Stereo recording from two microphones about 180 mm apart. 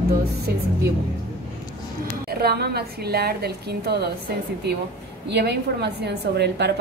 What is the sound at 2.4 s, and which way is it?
A woman's voice, 60° right (ahead or behind).